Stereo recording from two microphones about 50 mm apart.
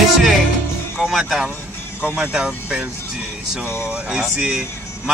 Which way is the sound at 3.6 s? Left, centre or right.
Left.